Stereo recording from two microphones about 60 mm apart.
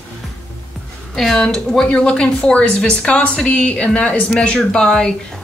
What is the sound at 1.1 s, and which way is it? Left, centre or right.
A woman's voice, centre.